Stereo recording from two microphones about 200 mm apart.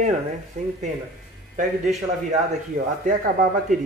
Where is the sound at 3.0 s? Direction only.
40° right (ahead or behind).